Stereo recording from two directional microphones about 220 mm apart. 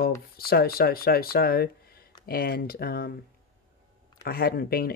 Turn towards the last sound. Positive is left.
turn(degrees=45)  # may be behind; listen again after turning